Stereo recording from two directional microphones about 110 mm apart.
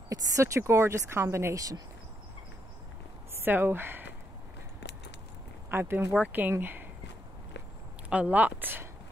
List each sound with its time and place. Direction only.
0.1 s speech: 25° right (ahead or behind)
3.3 s speech: 20° right (ahead or behind)
5.7 s speech: 20° right (ahead or behind)
8.1 s speech: 15° right (ahead or behind)